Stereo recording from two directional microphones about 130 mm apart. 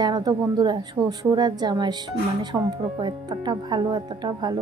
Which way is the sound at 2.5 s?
15° right (ahead or behind).